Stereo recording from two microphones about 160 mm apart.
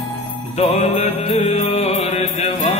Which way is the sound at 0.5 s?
45° left (ahead or behind).